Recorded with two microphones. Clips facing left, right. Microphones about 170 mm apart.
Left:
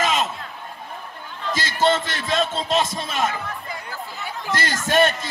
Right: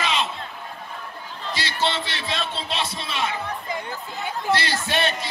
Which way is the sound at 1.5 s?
45° left (ahead or behind).